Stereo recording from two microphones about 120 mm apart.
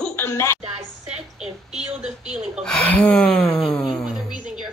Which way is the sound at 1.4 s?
70° right (ahead or behind).